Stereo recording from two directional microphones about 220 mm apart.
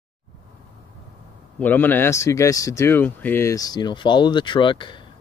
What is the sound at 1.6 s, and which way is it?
Speech, 10° left (ahead or behind).